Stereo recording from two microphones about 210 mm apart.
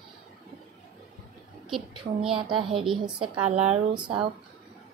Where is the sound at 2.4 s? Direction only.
25° right (ahead or behind).